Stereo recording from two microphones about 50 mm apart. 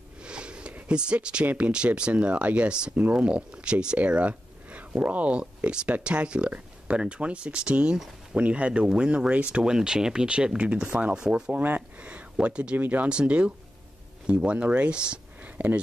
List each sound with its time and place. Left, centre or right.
0.2 s a sound: centre
0.8 s speech: centre
11.5 s speech: right
12.1 s speech: right
12.7 s speech: right
13.1 s speech: right
15.5 s speech: right